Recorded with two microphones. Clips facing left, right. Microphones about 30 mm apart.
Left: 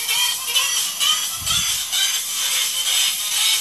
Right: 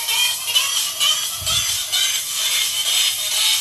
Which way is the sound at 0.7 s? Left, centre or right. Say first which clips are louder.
Right 1 dB; right.